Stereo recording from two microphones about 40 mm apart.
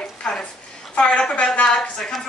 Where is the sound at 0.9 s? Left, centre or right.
Left.